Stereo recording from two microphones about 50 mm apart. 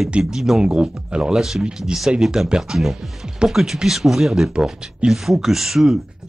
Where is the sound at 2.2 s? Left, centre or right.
Centre.